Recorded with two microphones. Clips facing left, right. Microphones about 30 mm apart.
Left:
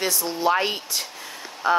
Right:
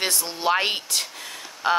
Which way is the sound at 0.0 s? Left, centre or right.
Right.